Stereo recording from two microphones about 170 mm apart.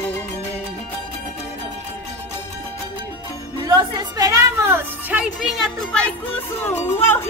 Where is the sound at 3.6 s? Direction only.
25° right (ahead or behind); by 6.1 s 5° left (ahead or behind).